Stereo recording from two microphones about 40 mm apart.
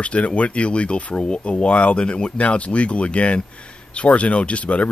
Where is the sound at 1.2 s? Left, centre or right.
Left.